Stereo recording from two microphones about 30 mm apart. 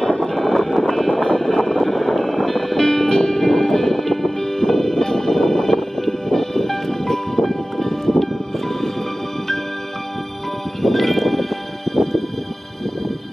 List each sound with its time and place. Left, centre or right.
0.2 s vehicle: centre
1.7 s music: centre
2.8 s music: centre
10.8 s music: centre